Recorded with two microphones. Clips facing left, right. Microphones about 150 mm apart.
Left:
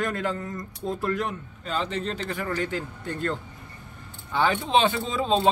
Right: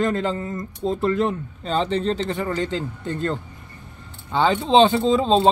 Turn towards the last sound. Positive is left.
turn(degrees=-25)  # may be behind; listen again after turning